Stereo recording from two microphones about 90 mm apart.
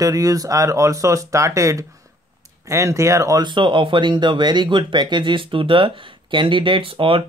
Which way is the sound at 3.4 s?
65° right (ahead or behind).